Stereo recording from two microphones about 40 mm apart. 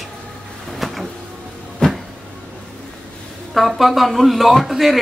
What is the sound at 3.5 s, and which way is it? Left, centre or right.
Speech, centre.